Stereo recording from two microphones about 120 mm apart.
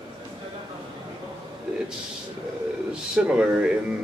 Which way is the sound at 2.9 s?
10° right (ahead or behind).